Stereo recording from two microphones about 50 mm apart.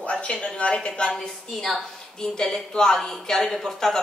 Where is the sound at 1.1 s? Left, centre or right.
Centre.